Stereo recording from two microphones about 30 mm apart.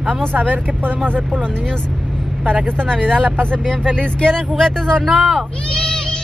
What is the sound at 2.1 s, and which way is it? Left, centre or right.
Vehicle, centre.